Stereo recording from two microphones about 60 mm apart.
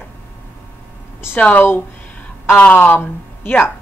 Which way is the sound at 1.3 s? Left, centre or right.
Left.